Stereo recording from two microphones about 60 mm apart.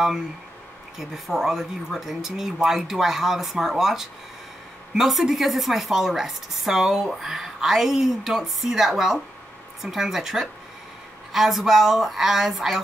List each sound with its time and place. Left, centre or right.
0.9 s a woman's voice: centre